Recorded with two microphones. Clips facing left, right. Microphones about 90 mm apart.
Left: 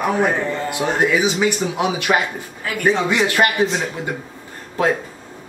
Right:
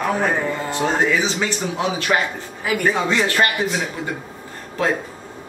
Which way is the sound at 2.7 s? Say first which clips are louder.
Right 4 dB; 10° right (ahead or behind).